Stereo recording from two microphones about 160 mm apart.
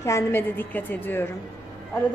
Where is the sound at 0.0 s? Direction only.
15° left (ahead or behind).